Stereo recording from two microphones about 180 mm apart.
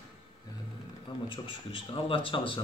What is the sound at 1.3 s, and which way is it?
Speech, 30° left (ahead or behind).